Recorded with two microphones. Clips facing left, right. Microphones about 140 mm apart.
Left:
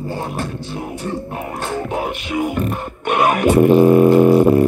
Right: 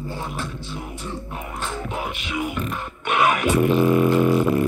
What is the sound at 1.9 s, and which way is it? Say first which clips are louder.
Music: left 6 dB; 45° left (ahead or behind).